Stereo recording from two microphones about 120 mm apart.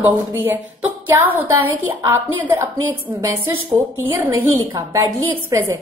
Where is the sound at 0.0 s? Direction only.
20° right (ahead or behind).